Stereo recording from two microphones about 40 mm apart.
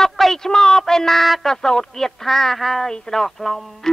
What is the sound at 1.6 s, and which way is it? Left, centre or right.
Speech, centre.